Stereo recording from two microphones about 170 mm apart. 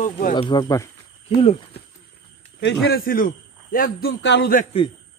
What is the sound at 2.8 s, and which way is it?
A man's voice, 60° left (ahead or behind).